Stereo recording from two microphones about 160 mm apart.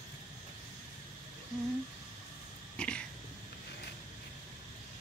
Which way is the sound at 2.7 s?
5° left (ahead or behind).